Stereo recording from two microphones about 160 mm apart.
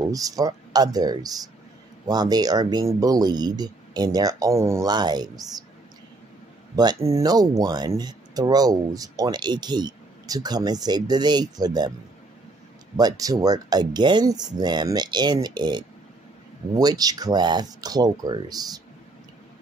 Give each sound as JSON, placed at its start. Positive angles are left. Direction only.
{"t": 0.1, "sound": "speech", "side_deg": -20}
{"t": 6.7, "sound": "speech", "side_deg": -25}
{"t": 12.9, "sound": "speech", "side_deg": -25}